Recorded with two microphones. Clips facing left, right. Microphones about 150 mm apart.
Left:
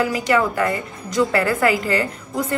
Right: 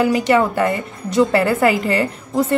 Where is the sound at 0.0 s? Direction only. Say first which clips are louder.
Right 4 dB; 25° right (ahead or behind).